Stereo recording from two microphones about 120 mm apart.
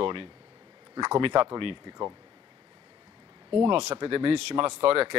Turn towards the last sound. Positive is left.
turn(degrees=-50)  # may be behind; listen again after turning